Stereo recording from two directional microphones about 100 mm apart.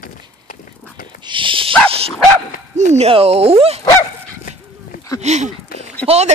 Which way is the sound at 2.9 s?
90° right.